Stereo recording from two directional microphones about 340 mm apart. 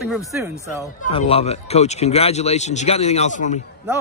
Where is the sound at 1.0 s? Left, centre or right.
Centre.